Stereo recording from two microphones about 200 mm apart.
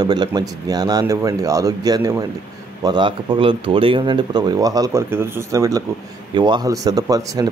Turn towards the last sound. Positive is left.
turn(degrees=-15)  # may be behind; listen again after turning